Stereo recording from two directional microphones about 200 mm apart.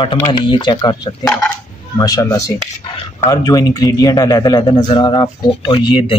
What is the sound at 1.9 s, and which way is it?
A man's voice, 15° left (ahead or behind).